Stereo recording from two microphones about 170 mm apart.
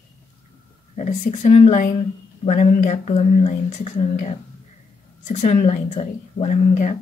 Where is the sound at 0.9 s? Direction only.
45° left (ahead or behind).